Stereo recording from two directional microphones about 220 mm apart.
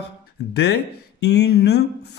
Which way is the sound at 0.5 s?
50° left (ahead or behind).